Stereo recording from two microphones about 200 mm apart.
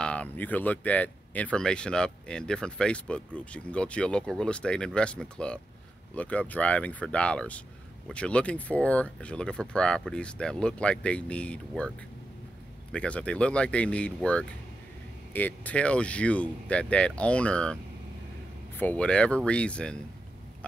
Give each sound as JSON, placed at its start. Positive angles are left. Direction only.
{"t": 0.0, "sound": "speech", "side_deg": 5}
{"t": 12.9, "sound": "speech", "side_deg": 5}
{"t": 18.8, "sound": "speech", "side_deg": 5}